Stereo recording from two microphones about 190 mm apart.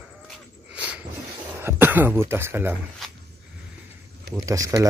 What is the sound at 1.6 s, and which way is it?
Speech, 10° right (ahead or behind).